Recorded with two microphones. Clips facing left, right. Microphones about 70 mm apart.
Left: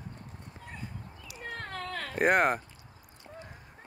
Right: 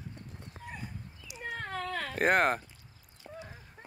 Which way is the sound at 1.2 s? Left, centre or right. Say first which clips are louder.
Right 1 dB; centre.